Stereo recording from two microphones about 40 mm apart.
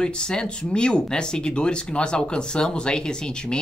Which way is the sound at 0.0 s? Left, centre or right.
Left.